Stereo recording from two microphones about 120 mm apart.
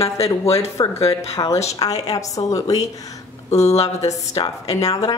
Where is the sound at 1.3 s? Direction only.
25° left (ahead or behind).